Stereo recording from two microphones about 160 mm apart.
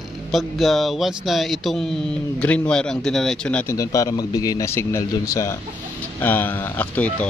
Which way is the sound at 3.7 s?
20° left (ahead or behind).